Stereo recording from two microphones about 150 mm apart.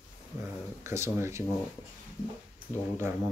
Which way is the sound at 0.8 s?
20° right (ahead or behind).